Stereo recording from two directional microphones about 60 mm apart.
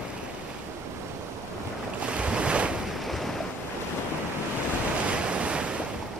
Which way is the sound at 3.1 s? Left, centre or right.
Centre.